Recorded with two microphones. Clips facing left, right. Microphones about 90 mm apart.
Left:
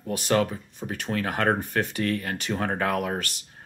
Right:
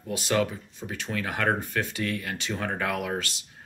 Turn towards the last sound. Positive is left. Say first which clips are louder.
# left 3 dB
turn(degrees=45)  # may be behind; listen again after turning